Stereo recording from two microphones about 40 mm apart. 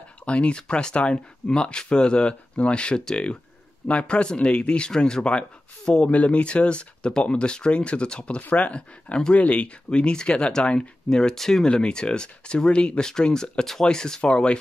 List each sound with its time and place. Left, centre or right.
0.2 s speech: left
6.0 s speech: left
11.3 s speech: centre
11.6 s speech: left